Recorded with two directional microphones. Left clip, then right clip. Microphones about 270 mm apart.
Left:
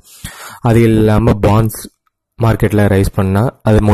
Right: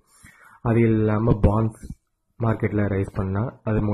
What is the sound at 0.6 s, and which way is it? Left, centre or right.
Speech, left.